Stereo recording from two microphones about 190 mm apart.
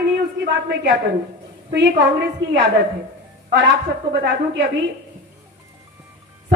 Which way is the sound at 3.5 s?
75° right (ahead or behind).